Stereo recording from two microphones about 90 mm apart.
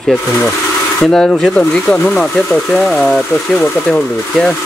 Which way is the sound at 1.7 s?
10° left (ahead or behind).